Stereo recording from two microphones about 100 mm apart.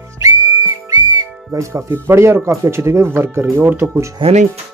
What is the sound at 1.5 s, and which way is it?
Speech, 30° right (ahead or behind).